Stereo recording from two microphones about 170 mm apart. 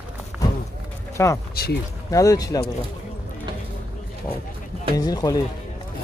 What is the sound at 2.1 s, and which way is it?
Speech, 20° left (ahead or behind).